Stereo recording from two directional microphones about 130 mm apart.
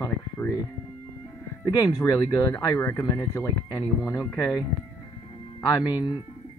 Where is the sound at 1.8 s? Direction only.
25° left (ahead or behind).